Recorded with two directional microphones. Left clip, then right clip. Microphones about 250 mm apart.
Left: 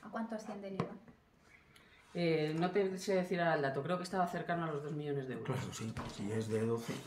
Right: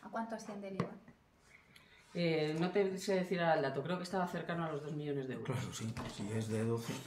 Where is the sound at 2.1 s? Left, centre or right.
Centre.